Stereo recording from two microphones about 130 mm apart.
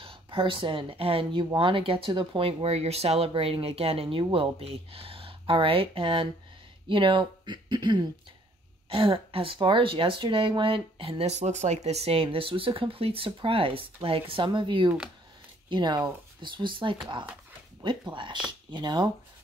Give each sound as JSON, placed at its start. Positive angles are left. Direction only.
{"t": 0.0, "sound": "speech", "side_deg": -40}